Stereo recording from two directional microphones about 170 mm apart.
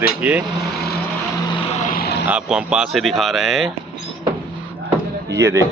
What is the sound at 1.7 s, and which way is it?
Vehicle, 50° left (ahead or behind).